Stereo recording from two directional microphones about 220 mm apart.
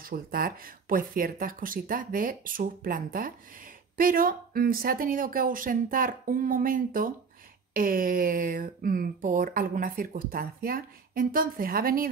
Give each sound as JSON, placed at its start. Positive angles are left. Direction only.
{"t": 0.0, "sound": "speech", "side_deg": -40}